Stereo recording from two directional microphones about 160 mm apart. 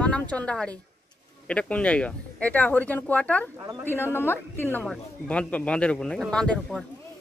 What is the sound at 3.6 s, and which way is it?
Speech, 20° right (ahead or behind).